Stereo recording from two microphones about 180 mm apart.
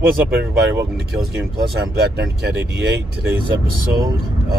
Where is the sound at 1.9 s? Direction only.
65° right (ahead or behind).